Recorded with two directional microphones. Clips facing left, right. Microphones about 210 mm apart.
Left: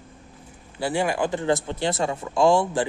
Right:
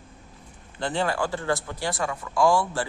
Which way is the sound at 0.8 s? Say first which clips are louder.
Left 3 dB; 10° left (ahead or behind).